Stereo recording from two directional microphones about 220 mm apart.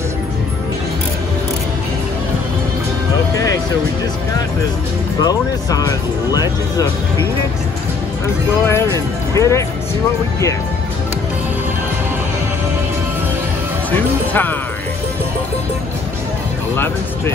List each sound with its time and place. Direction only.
5.2 s speech: 15° left (ahead or behind)
8.6 s speech: 10° left (ahead or behind)
13.9 s speech: 10° left (ahead or behind)